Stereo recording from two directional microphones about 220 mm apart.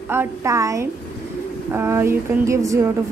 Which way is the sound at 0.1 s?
10° right (ahead or behind).